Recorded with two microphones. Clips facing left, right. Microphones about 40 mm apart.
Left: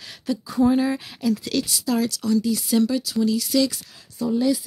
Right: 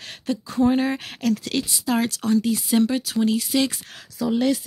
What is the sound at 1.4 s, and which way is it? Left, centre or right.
Speech, right.